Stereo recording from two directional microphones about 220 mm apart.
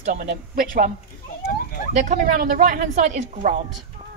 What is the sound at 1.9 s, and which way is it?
Speech, 35° right (ahead or behind).